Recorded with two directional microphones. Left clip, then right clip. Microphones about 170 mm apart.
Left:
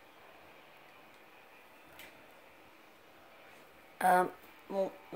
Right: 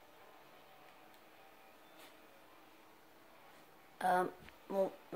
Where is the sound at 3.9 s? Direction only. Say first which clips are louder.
Left 6 dB; 30° left (ahead or behind).